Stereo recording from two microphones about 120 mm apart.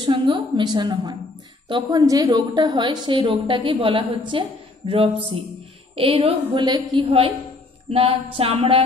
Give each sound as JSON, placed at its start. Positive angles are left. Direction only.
{"t": 0.0, "sound": "a woman's voice", "side_deg": -40}
{"t": 2.0, "sound": "a woman's voice", "side_deg": -30}